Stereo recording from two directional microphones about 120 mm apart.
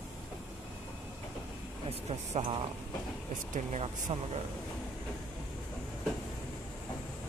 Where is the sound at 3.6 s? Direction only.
75° right (ahead or behind).